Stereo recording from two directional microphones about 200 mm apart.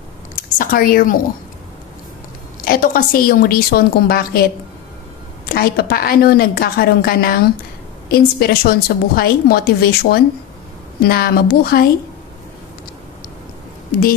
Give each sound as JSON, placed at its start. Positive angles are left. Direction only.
{"t": 0.6, "sound": "a woman's voice", "side_deg": 45}
{"t": 2.6, "sound": "a woman's voice", "side_deg": 45}
{"t": 5.5, "sound": "a woman's voice", "side_deg": 50}